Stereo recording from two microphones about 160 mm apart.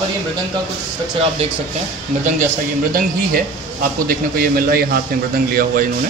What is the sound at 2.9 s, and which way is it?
Speech, 60° right (ahead or behind).